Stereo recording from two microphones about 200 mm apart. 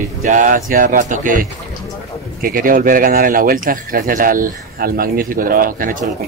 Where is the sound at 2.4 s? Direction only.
45° right (ahead or behind).